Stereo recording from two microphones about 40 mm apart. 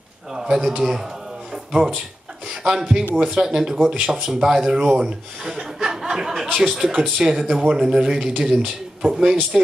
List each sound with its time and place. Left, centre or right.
0.3 s a man's voice: centre